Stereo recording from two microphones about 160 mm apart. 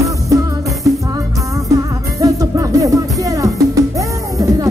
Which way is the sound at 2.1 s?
20° right (ahead or behind).